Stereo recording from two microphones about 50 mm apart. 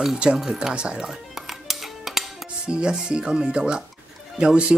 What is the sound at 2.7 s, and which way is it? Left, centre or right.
Speech, centre.